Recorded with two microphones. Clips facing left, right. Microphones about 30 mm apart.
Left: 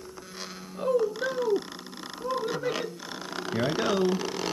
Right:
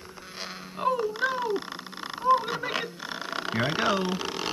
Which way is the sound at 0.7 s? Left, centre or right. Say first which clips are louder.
Left 1 dB; right.